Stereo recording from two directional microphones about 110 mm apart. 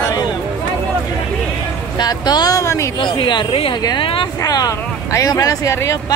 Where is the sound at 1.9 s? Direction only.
40° left (ahead or behind).